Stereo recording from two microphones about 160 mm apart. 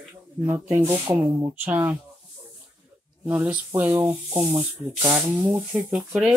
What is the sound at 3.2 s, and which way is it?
Speech, 10° right (ahead or behind).